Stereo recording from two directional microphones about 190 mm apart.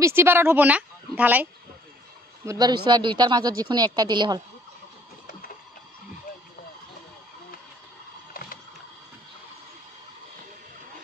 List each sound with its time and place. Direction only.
0.0 s a woman's voice: 15° right (ahead or behind)
2.4 s a woman's voice: 20° right (ahead or behind)
8.3 s a sound: 50° left (ahead or behind)